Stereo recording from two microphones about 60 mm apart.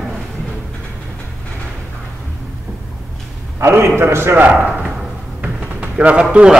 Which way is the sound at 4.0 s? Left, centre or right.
Right.